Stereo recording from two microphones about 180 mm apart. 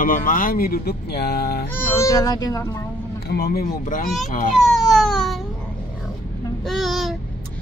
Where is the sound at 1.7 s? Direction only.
15° left (ahead or behind).